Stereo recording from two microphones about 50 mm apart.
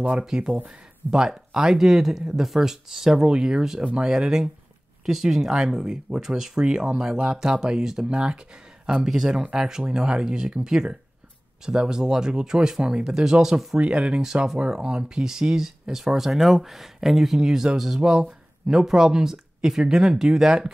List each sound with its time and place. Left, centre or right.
0.3 s speech: centre
4.1 s speech: centre
13.7 s speech: right
14.2 s speech: centre